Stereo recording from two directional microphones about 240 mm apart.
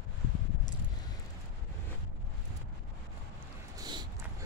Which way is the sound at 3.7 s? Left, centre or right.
Centre.